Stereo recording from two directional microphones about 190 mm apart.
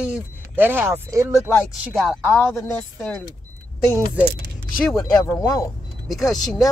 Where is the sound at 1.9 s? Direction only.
Centre (ahead or behind).